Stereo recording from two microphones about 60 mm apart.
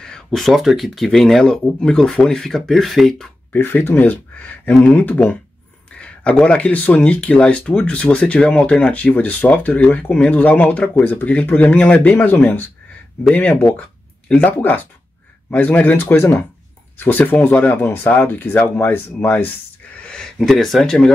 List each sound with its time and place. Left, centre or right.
0.0 s speech: centre
3.5 s speech: left
5.9 s a sound: centre
6.4 s speech: left
20.3 s speech: centre